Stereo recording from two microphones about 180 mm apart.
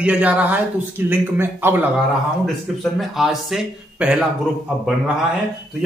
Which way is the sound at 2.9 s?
Centre (ahead or behind).